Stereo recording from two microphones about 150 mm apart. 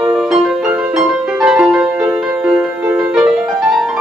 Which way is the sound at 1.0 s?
5° right (ahead or behind).